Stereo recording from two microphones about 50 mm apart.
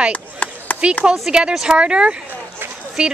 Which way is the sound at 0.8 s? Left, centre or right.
Right.